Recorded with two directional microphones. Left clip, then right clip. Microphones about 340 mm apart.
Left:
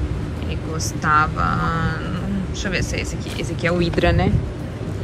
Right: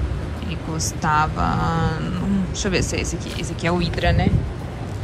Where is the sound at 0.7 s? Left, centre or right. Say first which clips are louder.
Left 2 dB; centre.